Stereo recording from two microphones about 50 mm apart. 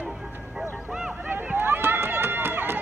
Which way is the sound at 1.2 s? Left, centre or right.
Right.